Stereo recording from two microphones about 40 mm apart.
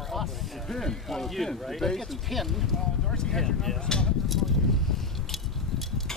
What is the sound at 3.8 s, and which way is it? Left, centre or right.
Speech, centre.